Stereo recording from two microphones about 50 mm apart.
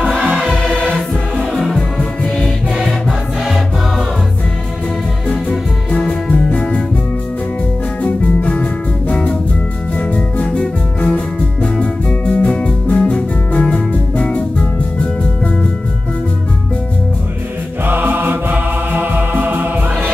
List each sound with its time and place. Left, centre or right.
0.2 s music: right
0.8 s music: centre
2.8 s music: centre
5.3 s music: left
8.0 s music: left
17.8 s music: right